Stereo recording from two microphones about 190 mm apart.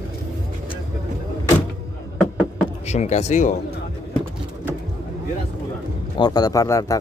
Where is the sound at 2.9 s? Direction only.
35° left (ahead or behind).